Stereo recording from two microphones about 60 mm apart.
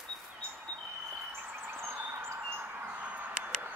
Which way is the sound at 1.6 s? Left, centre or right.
Right.